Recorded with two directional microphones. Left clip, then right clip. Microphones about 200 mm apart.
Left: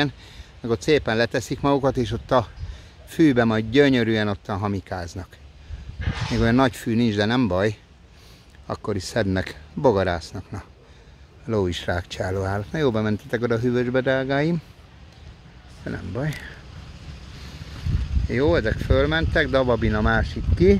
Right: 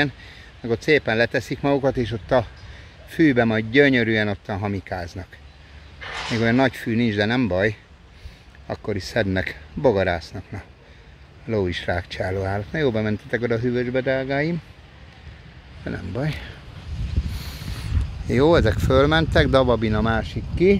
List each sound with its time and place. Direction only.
0.0 s speech: 15° left (ahead or behind)
5.9 s speech: 55° right (ahead or behind)
6.3 s speech: 15° left (ahead or behind)
15.8 s speech: centre (ahead or behind)
18.3 s speech: 15° right (ahead or behind)
19.7 s speech: centre (ahead or behind)